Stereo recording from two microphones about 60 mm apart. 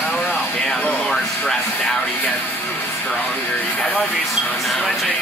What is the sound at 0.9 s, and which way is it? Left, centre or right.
Music, centre.